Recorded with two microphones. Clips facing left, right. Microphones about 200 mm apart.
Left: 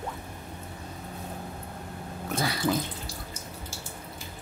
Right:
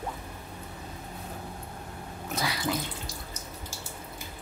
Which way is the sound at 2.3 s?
50° left (ahead or behind).